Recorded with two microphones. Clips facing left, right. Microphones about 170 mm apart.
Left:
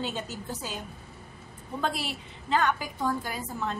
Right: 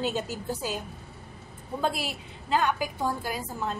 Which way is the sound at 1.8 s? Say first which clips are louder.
Right 2 dB; 10° right (ahead or behind).